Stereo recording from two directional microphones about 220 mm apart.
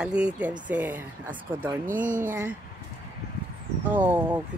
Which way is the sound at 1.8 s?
35° right (ahead or behind).